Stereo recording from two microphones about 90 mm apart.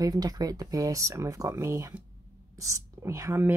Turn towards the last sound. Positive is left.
turn(degrees=-30)  # may be behind; listen again after turning